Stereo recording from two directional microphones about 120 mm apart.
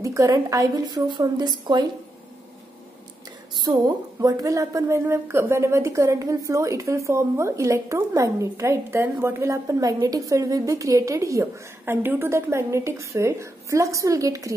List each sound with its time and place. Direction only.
0.0 s a woman's voice: 25° right (ahead or behind)
3.5 s a woman's voice: 35° right (ahead or behind)